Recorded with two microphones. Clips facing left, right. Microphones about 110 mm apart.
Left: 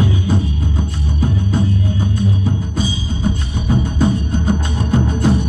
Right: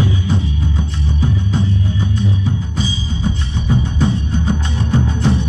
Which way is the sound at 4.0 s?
50° left (ahead or behind).